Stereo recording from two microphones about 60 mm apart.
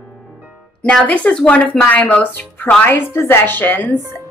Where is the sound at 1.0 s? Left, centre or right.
Left.